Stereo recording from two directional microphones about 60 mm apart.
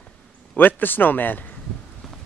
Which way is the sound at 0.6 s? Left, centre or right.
Left.